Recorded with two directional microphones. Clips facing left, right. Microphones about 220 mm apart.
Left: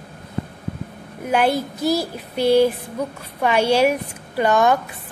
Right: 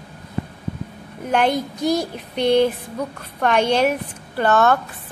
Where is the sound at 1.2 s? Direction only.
10° left (ahead or behind).